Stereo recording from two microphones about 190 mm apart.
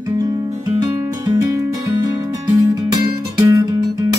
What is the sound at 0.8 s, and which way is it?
Music, 20° right (ahead or behind).